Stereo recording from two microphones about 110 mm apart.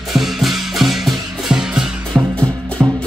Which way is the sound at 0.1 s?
Centre (ahead or behind).